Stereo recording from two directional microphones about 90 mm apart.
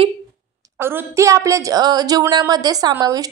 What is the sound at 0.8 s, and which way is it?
A woman's voice, 25° right (ahead or behind).